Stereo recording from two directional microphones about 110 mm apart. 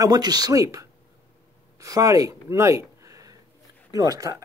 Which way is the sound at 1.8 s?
30° right (ahead or behind).